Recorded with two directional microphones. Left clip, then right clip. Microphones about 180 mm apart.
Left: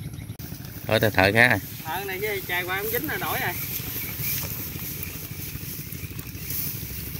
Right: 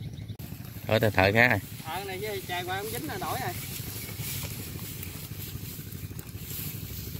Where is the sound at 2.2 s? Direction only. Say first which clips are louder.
Left 7 dB; 55° right (ahead or behind).